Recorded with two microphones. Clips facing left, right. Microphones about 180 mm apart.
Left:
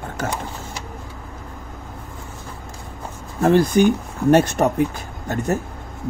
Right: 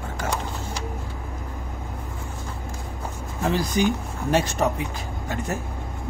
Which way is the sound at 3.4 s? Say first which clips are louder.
Left 8 dB; 55° left (ahead or behind).